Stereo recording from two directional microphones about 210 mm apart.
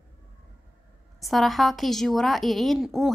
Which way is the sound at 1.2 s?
Centre (ahead or behind).